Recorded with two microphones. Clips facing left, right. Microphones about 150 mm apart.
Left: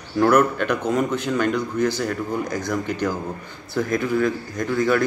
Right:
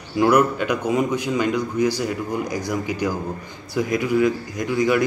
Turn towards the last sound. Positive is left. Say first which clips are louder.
# right 1 dB
turn(degrees=-10)  # may be behind; listen again after turning